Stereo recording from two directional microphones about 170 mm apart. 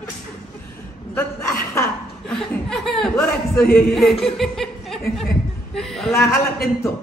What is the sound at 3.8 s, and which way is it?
Speech, centre (ahead or behind).